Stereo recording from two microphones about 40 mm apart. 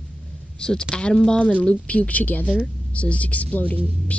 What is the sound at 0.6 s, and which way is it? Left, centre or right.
Speech, left.